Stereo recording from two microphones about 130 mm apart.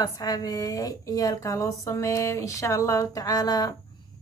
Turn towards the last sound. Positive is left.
turn(degrees=30)  # may be behind; listen again after turning